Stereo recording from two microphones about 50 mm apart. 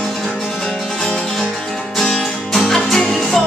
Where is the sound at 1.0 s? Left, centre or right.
Centre.